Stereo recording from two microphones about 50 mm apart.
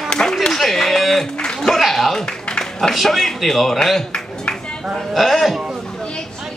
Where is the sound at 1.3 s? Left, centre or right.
Centre.